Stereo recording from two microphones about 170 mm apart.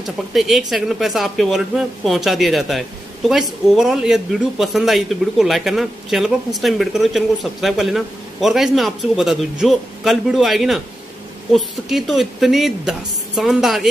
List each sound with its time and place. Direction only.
0.0 s a man's voice: centre (ahead or behind)